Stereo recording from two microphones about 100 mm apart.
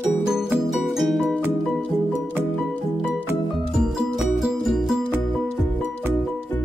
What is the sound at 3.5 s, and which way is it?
Music, centre (ahead or behind).